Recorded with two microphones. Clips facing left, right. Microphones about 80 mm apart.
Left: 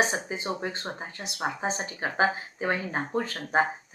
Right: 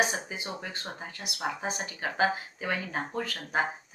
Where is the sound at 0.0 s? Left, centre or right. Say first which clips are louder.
Left 2 dB; left.